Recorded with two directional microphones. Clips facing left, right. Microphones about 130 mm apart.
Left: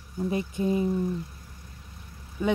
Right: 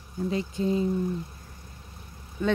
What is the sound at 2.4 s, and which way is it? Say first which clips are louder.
Speech: even; 15° left (ahead or behind).